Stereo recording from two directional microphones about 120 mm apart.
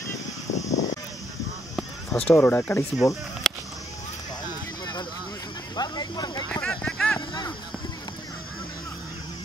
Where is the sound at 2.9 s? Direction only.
Centre (ahead or behind).